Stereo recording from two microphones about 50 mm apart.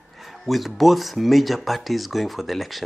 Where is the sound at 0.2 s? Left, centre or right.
Centre.